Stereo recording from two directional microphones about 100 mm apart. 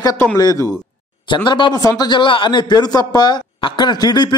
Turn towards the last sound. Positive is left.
turn(degrees=45)  # may be behind; listen again after turning